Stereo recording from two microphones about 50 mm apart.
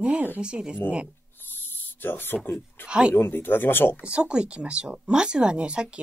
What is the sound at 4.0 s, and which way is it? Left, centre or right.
Speech, centre.